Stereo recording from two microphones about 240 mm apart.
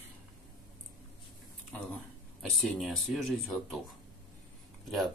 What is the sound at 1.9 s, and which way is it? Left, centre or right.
Speech, centre.